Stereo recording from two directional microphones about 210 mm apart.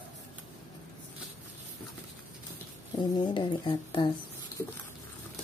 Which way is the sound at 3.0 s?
20° left (ahead or behind).